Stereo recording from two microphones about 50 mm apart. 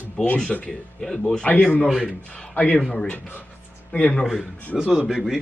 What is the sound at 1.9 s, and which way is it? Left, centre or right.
Speech, centre.